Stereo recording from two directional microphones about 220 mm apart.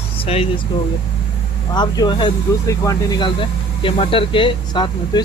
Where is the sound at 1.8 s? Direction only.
20° left (ahead or behind).